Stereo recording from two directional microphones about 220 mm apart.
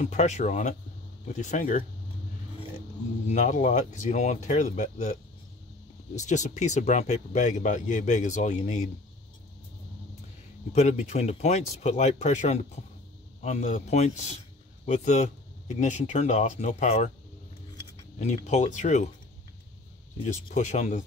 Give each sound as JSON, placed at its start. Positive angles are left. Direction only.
{"t": 0.0, "sound": "speech", "side_deg": 30}
{"t": 3.3, "sound": "speech", "side_deg": 35}
{"t": 6.2, "sound": "speech", "side_deg": 30}
{"t": 10.7, "sound": "speech", "side_deg": 30}
{"t": 18.2, "sound": "speech", "side_deg": 30}
{"t": 20.4, "sound": "speech", "side_deg": 35}